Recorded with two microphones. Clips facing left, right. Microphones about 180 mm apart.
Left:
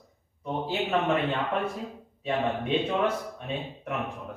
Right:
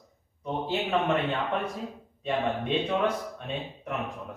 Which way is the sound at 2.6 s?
5° left (ahead or behind).